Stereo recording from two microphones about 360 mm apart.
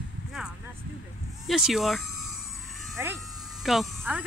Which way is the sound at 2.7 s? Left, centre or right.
Centre.